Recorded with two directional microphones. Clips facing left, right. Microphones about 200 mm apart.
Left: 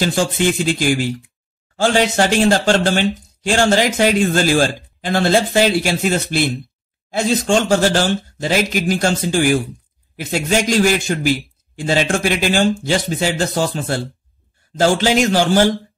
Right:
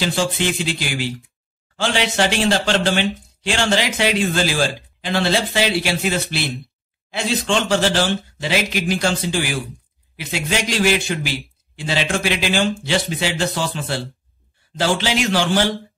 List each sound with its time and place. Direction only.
0.0 s speech: 50° left (ahead or behind)